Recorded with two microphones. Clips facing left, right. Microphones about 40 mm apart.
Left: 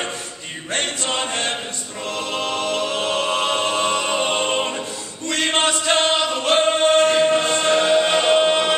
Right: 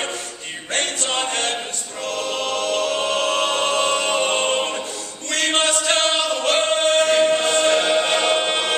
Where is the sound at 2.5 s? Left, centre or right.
Left.